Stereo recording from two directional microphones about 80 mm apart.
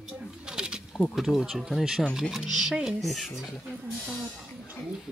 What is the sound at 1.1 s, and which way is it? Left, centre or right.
Speech, centre.